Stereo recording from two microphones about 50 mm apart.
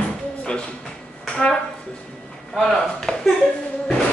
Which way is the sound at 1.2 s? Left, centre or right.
Centre.